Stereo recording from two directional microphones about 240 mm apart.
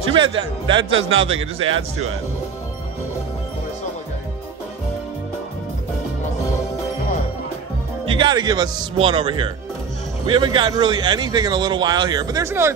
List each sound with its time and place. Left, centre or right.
0.1 s speech: centre
0.8 s a man's voice: right
8.0 s speech: centre